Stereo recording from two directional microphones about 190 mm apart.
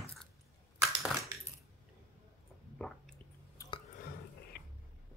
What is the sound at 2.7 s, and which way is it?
Squish, 5° left (ahead or behind).